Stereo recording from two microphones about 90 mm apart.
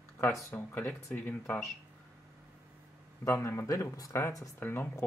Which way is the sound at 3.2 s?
30° left (ahead or behind).